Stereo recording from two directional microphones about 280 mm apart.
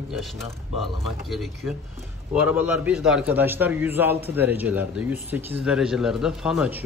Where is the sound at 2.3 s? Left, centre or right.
Centre.